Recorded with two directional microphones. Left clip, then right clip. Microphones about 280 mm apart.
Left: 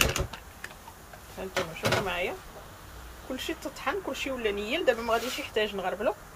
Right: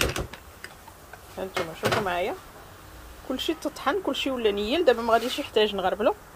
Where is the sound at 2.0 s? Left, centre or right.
Right.